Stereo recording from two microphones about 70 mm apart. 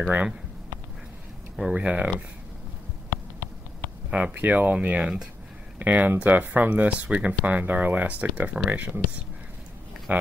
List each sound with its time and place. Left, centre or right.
1.6 s speech: centre
4.1 s speech: right